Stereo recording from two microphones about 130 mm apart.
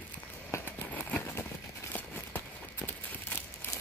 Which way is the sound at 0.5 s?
15° left (ahead or behind).